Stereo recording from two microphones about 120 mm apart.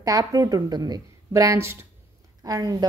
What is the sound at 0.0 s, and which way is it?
A woman's voice, 30° right (ahead or behind).